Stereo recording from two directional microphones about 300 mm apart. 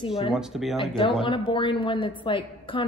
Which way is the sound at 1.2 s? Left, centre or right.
Centre.